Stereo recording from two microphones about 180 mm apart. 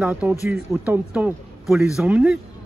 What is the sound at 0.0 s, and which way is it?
Speech, 5° right (ahead or behind).